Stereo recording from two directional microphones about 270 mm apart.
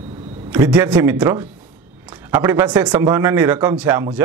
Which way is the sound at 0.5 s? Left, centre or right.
Centre.